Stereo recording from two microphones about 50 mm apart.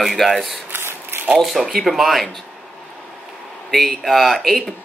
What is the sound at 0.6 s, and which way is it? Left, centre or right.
Shuffling cards, right.